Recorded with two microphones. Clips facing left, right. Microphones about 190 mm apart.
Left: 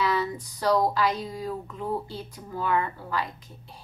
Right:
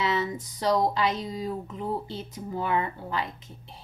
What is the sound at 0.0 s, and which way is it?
Speech, 20° right (ahead or behind).